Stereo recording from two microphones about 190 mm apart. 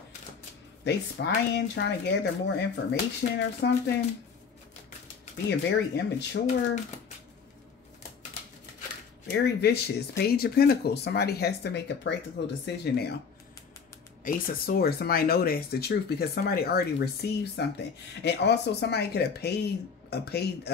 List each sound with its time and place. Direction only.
0.8 s speech: 60° left (ahead or behind)
5.5 s speech: 65° left (ahead or behind)
9.4 s speech: 60° left (ahead or behind)
14.2 s speech: 50° left (ahead or behind)